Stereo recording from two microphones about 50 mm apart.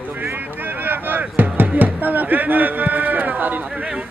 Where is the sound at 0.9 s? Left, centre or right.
Right.